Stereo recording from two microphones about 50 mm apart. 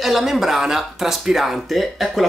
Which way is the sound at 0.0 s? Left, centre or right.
Centre.